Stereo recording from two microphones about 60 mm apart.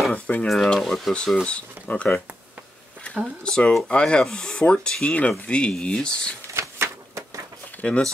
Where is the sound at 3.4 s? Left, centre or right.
Centre.